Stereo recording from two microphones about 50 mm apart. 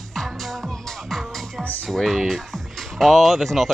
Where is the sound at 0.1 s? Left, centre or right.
Centre.